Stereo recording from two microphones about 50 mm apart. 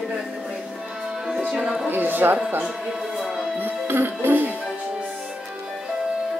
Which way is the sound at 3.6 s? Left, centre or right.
Right.